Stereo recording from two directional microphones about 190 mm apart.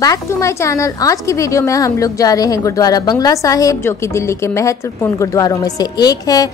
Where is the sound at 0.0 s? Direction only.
15° left (ahead or behind).